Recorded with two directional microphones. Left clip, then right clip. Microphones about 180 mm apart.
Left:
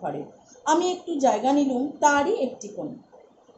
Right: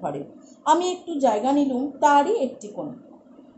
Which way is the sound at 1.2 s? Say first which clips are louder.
Right 1 dB; 5° right (ahead or behind).